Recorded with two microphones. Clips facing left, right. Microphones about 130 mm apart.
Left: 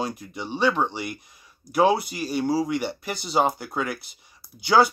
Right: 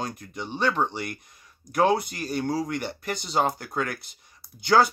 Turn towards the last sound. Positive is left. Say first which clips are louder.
# left 1 dB
turn(degrees=5)  # may be behind; listen again after turning